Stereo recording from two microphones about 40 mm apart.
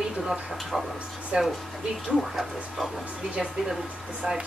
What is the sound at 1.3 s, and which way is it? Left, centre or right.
Speech, centre.